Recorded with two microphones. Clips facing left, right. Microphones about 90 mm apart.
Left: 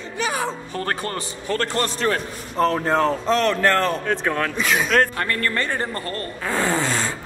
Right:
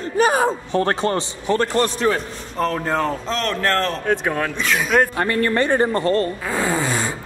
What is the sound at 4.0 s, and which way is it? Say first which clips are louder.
Speech: right 2 dB; 15° right (ahead or behind).